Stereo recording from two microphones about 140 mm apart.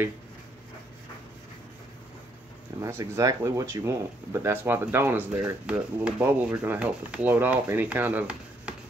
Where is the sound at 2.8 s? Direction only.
25° right (ahead or behind).